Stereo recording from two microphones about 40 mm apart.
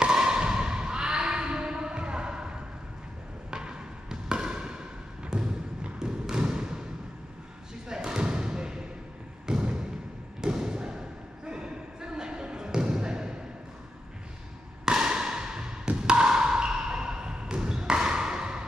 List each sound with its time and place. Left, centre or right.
0.0 s a sound: centre
3.4 s basketball bounce: centre
5.9 s trickle: centre
7.9 s basketball bounce: centre
9.5 s thump: right
11.4 s basketball bounce: right
14.9 s a sound: centre